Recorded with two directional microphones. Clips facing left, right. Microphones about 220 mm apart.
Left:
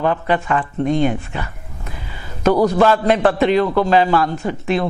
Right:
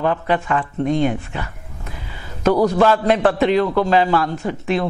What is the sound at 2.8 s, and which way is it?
A man's voice, 15° left (ahead or behind).